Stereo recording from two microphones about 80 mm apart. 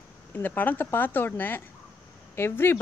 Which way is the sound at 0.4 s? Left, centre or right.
Left.